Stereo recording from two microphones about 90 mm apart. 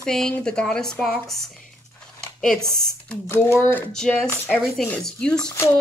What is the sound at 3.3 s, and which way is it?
Speech, 25° left (ahead or behind).